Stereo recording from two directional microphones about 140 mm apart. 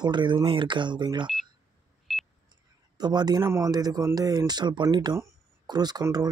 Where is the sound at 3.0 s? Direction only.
30° right (ahead or behind).